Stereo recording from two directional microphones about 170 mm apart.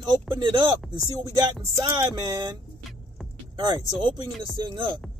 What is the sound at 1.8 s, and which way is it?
Speech, 25° right (ahead or behind).